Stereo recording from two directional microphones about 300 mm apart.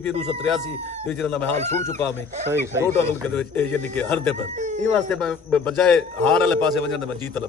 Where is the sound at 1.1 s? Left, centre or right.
Centre.